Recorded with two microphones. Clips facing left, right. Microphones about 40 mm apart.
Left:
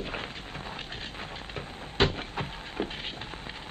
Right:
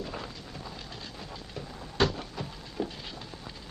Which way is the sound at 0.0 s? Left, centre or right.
Left.